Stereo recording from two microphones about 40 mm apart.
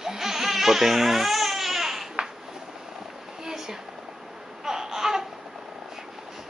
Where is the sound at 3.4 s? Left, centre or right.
Centre.